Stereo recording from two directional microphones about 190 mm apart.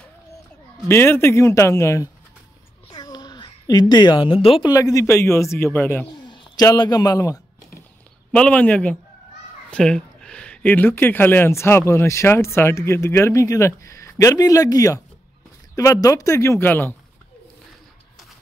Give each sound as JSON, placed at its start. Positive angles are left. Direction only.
{"t": 0.8, "sound": "speech", "side_deg": 10}
{"t": 2.9, "sound": "a sound", "side_deg": 20}
{"t": 3.9, "sound": "speech", "side_deg": 25}
{"t": 4.6, "sound": "speech", "side_deg": 15}
{"t": 6.2, "sound": "a sound", "side_deg": 25}
{"t": 8.3, "sound": "speech", "side_deg": 5}